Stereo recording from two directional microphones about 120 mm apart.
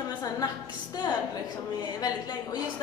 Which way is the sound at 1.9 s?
35° left (ahead or behind).